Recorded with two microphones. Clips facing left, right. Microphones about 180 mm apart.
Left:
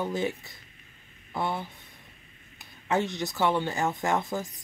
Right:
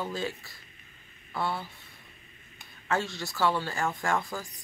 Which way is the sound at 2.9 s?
20° left (ahead or behind).